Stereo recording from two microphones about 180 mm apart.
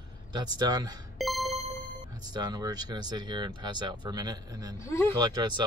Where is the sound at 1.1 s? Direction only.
Centre (ahead or behind).